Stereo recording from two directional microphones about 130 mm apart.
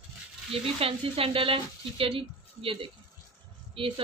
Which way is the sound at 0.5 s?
45° right (ahead or behind).